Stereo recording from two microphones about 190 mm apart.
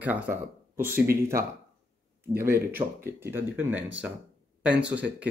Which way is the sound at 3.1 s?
10° right (ahead or behind).